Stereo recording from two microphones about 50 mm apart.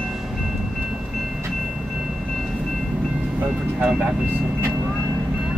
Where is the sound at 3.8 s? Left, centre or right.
Right.